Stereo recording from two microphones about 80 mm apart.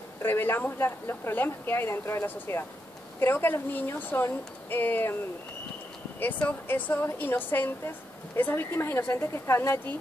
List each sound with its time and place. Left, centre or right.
0.2 s speech: left
6.7 s speech: left